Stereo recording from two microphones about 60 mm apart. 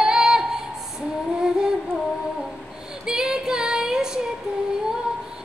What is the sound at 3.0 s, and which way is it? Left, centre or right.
Female singing, centre.